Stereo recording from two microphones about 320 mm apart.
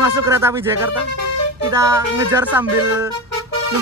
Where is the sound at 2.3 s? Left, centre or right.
Centre.